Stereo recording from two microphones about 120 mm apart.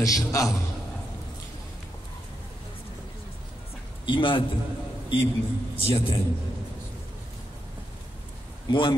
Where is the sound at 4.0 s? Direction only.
45° left (ahead or behind).